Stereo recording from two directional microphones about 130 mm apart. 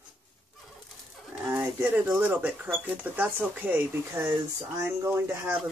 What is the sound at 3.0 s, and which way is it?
Speech, 15° right (ahead or behind).